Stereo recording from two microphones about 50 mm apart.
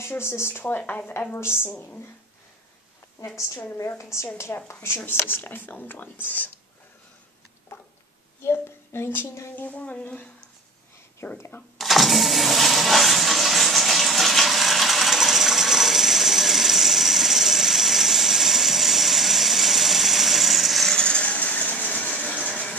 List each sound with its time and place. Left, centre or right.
0.1 s speech: left
1.5 s a woman's voice: left
3.3 s a woman's voice: left
4.5 s a woman's voice: left
5.0 s speech: left
7.7 s a sound: left
9.7 s speech: left
11.2 s a woman's voice: left
11.8 s vehicle: centre
20.9 s vehicle: centre
22.1 s a sound: left